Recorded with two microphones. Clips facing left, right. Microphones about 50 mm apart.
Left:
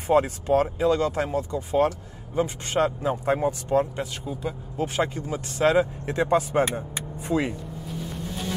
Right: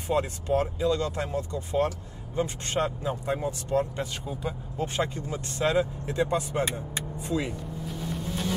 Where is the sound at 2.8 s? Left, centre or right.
Left.